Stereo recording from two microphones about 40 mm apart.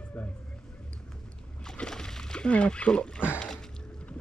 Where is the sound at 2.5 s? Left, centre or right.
Left.